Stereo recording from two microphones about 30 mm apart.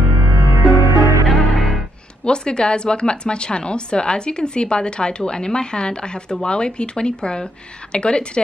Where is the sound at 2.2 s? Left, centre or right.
Left.